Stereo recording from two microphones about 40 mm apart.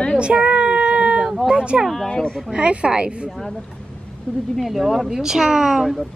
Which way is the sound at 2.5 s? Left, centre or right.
Right.